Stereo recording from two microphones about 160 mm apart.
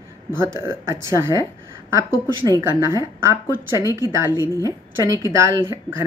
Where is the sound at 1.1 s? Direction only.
20° right (ahead or behind).